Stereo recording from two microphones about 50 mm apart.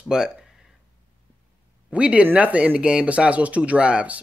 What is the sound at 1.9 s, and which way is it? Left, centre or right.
Speech, right.